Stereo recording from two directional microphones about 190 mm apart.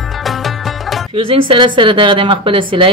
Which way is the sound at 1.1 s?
25° right (ahead or behind).